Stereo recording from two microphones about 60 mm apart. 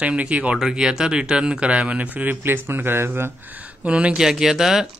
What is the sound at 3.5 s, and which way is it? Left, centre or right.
Speech, right.